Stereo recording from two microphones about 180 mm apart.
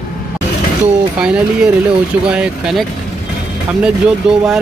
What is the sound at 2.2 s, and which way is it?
Speech, 5° right (ahead or behind).